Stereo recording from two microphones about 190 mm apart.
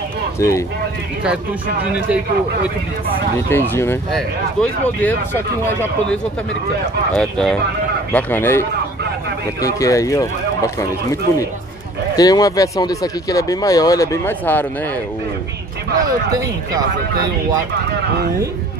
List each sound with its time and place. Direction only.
0.4 s speech: 15° left (ahead or behind)
3.4 s speech: 10° left (ahead or behind)
7.2 s speech: 5° left (ahead or behind)
16.0 s speech: 20° right (ahead or behind)